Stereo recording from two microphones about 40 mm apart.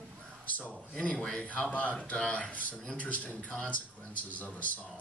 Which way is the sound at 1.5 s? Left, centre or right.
Left.